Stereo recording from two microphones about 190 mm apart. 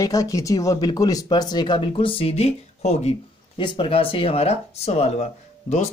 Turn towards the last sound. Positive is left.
turn(degrees=35)  # may be behind; listen again after turning